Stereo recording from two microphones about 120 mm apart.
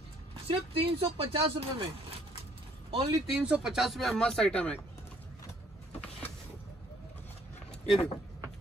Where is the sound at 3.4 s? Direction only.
5° right (ahead or behind).